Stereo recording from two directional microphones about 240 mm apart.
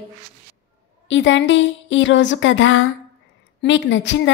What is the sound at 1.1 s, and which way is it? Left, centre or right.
A woman's voice, left.